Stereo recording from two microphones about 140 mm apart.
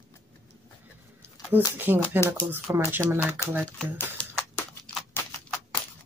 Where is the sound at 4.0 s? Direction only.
10° left (ahead or behind).